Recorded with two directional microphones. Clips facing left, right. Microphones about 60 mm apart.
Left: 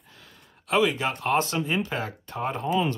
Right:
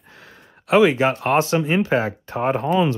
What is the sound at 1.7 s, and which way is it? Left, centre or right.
Speech, right.